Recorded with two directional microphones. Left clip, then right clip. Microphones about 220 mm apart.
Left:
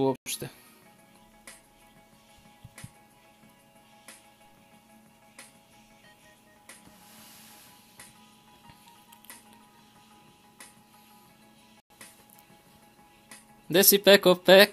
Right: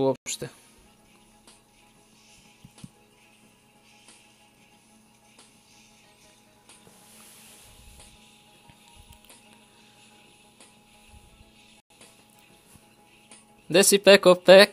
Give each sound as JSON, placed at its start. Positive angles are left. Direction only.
{"t": 0.0, "sound": "speech", "side_deg": -20}
{"t": 13.7, "sound": "speech", "side_deg": -20}